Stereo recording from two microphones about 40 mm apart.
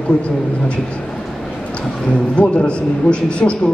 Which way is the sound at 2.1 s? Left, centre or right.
Left.